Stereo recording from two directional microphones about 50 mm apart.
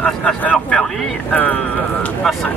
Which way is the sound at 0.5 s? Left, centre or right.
Centre.